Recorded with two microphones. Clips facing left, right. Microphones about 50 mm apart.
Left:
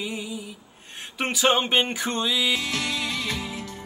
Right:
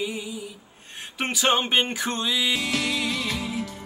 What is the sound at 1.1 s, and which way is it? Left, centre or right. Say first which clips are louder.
Music: left 1 dB; centre.